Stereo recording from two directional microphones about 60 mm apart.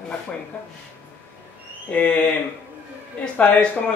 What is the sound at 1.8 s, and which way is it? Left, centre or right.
Speech, left.